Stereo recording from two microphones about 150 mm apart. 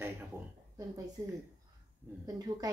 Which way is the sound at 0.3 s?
15° right (ahead or behind).